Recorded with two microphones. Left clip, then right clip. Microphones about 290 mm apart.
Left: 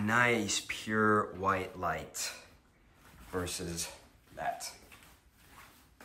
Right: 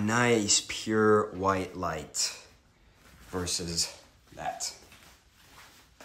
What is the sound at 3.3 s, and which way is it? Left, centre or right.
Speech, centre.